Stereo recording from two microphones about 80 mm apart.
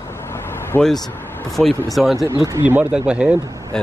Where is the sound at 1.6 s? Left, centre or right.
Centre.